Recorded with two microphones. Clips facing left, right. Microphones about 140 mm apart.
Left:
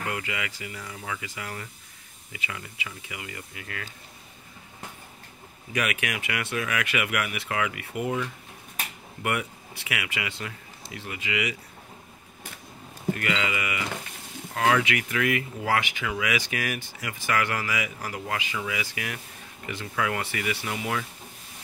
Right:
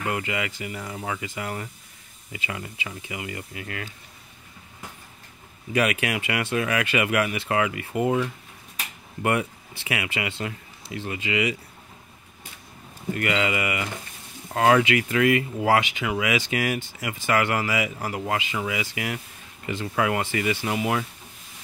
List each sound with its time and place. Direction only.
0.1 s speech: 30° right (ahead or behind)
5.7 s speech: 30° right (ahead or behind)
13.1 s speech: 30° right (ahead or behind)